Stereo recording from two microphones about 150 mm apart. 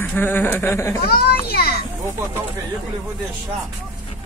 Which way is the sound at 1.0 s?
90° left.